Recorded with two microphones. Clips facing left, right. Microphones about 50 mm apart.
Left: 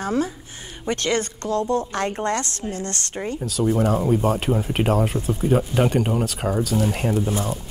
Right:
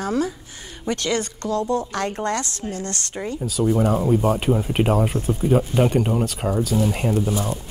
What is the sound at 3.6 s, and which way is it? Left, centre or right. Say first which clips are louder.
Speech: right 1 dB; centre.